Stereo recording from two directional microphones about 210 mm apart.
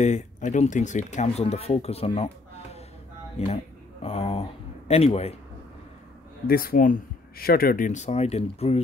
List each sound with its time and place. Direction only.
0.0 s speech: 35° left (ahead or behind)
6.4 s speech: 45° left (ahead or behind); by 8.8 s 30° left (ahead or behind)